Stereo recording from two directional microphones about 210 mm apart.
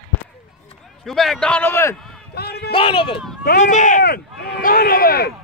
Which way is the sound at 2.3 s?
50° left (ahead or behind).